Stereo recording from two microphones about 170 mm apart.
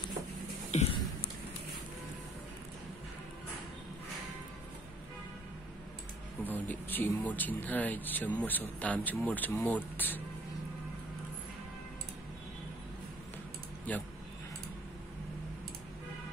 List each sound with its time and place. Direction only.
0.7 s a sound: 45° left (ahead or behind)
6.4 s speech: 10° left (ahead or behind)
13.9 s speech: 10° left (ahead or behind)